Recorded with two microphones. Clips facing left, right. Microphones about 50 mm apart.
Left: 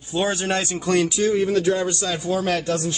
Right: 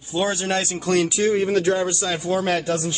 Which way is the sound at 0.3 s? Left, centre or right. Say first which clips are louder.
Even; left.